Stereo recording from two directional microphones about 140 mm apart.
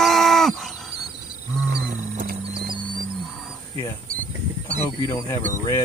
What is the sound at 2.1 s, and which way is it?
Music, 90° right.